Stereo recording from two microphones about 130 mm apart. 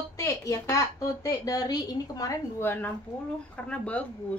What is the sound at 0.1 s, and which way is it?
A woman's voice, 25° left (ahead or behind).